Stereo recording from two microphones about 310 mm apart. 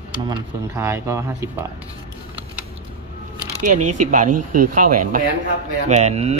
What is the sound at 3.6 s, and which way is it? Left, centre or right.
A man's voice, right.